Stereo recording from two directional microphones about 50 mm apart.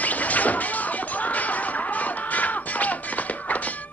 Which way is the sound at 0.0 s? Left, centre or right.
Left.